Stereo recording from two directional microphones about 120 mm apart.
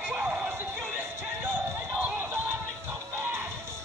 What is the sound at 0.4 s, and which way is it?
Music, 20° right (ahead or behind).